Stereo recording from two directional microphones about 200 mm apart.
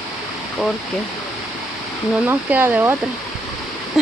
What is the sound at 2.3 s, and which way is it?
Speech, 10° right (ahead or behind).